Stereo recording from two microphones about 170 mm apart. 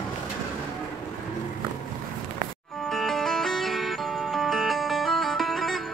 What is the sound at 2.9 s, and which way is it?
Music, centre (ahead or behind).